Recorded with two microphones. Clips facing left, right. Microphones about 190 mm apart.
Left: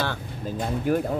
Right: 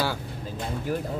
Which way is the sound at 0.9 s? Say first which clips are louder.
Left 6 dB; 55° left (ahead or behind).